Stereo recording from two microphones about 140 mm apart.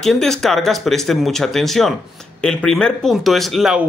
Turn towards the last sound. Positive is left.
turn(degrees=0)  # may be behind; listen again after turning